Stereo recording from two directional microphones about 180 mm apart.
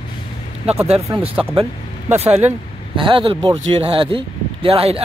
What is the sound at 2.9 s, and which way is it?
Speech, 30° right (ahead or behind).